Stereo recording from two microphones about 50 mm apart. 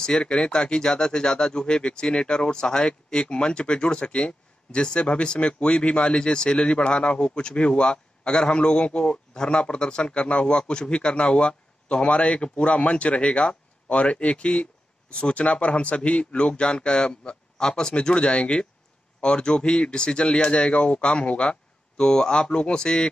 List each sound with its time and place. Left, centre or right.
0.0 s speech: centre